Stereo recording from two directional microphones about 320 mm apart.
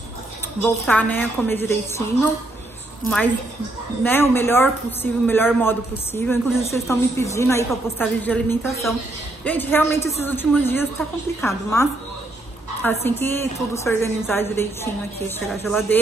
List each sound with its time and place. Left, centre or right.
0.6 s a woman's voice: centre
4.0 s speech: centre
13.0 s speech: centre